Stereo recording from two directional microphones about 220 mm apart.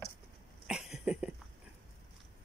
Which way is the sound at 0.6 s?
5° right (ahead or behind).